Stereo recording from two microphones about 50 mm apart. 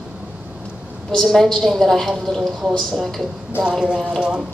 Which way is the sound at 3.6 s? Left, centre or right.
Centre.